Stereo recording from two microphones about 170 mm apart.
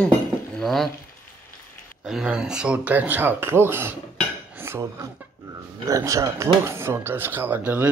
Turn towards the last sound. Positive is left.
turn(degrees=-10)  # may be behind; listen again after turning